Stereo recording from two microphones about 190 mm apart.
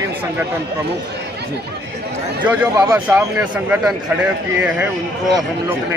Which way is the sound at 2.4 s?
10° right (ahead or behind).